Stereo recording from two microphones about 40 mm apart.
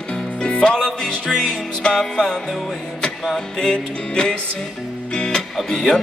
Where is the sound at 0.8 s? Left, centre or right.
Centre.